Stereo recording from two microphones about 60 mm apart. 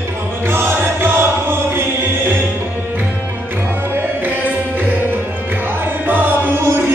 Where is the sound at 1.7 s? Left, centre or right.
Right.